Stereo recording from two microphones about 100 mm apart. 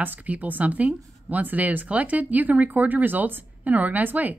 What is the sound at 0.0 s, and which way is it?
Speech, 15° right (ahead or behind).